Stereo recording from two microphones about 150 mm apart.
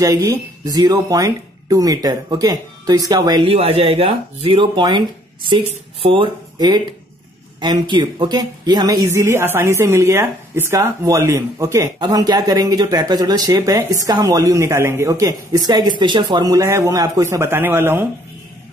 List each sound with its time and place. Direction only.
0.0 s speech: 20° right (ahead or behind)
3.4 s speech: 45° right (ahead or behind); by 18.0 s 15° right (ahead or behind)